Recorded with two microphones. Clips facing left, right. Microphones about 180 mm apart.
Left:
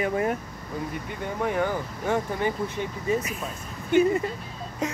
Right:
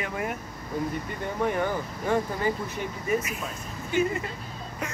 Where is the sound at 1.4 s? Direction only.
10° left (ahead or behind).